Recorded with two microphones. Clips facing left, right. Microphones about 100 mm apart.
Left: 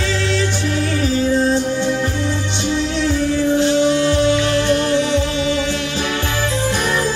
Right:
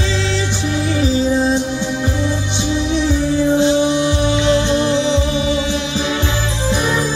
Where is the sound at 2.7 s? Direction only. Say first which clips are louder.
Right 2 dB; 20° right (ahead or behind).